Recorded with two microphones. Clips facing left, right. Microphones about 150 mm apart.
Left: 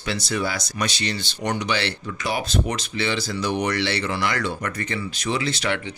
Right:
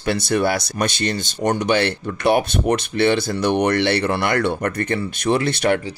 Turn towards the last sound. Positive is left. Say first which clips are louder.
# right 7 dB
turn(degrees=-55)  # may be behind; listen again after turning